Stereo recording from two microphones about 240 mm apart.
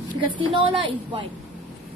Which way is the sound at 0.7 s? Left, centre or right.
Right.